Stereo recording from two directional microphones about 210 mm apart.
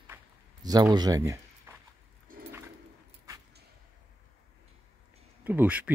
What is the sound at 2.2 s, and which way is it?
Dog, 40° right (ahead or behind).